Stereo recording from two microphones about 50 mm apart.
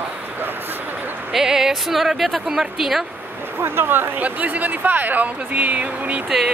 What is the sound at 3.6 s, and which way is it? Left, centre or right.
Speech, right.